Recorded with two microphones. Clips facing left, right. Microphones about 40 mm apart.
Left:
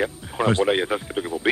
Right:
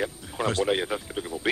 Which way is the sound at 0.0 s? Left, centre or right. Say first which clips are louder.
Left 5 dB; left.